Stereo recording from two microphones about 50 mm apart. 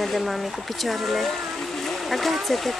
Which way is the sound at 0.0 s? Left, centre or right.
Centre.